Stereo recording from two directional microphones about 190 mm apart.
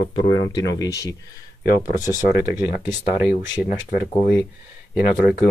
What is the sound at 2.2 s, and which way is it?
Speech, 45° left (ahead or behind).